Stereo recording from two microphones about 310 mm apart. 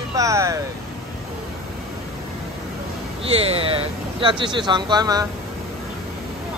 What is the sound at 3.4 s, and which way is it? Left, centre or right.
Speech, centre.